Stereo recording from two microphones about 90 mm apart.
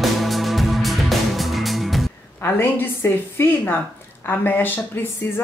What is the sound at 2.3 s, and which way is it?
A woman's voice, 25° left (ahead or behind).